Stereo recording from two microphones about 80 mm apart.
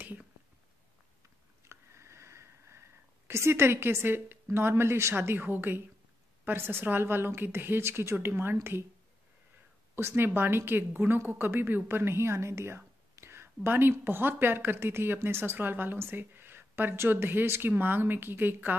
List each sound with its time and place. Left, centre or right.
1.6 s a sound: right
3.3 s a woman's voice: right
9.9 s a woman's voice: right